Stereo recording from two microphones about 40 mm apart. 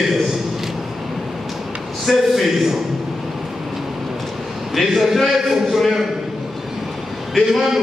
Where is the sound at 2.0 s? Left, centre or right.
Centre.